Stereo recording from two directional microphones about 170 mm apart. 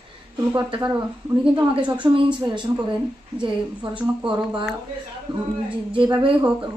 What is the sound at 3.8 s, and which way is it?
Speech, 30° right (ahead or behind).